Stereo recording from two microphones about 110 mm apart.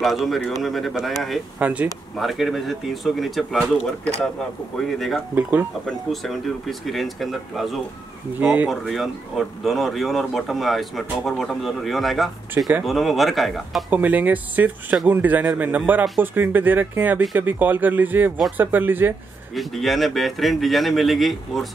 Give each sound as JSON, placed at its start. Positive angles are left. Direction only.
{"t": 0.0, "sound": "speech", "side_deg": 0}
{"t": 1.6, "sound": "speech", "side_deg": -10}
{"t": 2.1, "sound": "speech", "side_deg": 0}
{"t": 5.3, "sound": "speech", "side_deg": -15}
{"t": 5.9, "sound": "speech", "side_deg": 0}
{"t": 13.8, "sound": "speech", "side_deg": -15}
{"t": 19.5, "sound": "speech", "side_deg": 0}